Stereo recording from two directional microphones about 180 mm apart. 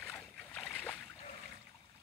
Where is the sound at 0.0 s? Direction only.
10° left (ahead or behind).